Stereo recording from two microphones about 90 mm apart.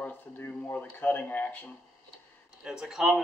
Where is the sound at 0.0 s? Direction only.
20° left (ahead or behind).